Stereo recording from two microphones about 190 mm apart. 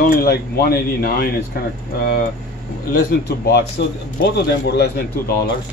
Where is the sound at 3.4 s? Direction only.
55° left (ahead or behind).